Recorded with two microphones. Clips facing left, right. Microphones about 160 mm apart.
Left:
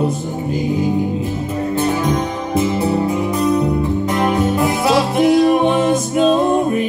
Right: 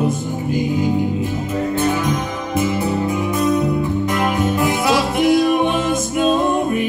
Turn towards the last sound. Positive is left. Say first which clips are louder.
# left 3 dB
turn(degrees=30)  # may be behind; listen again after turning